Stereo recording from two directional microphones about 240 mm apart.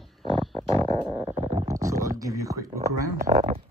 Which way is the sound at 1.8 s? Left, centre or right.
Centre.